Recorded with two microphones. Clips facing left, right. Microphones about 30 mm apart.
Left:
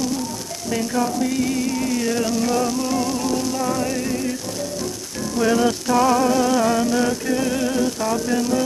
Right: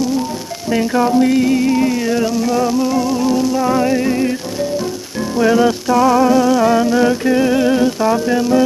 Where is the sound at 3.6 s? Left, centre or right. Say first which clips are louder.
Right 8 dB; right.